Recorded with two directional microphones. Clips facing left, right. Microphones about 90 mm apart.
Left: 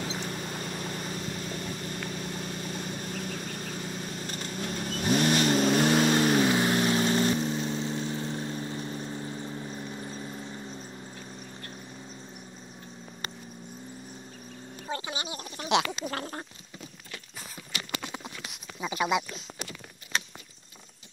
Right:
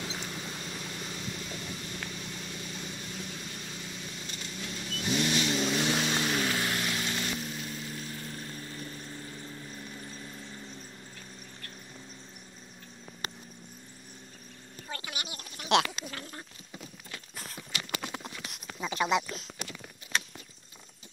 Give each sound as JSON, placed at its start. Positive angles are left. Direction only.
{"t": 0.3, "sound": "vehicle", "side_deg": 45}
{"t": 6.4, "sound": "vehicle", "side_deg": 25}
{"t": 14.9, "sound": "speech", "side_deg": 25}
{"t": 15.7, "sound": "gargling", "side_deg": 0}
{"t": 16.1, "sound": "a sound", "side_deg": 45}
{"t": 18.0, "sound": "clip-clop", "side_deg": 0}
{"t": 20.1, "sound": "vehicle", "side_deg": 0}